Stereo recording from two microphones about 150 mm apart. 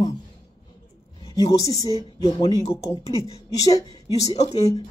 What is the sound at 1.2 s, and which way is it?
A woman's voice, 40° left (ahead or behind).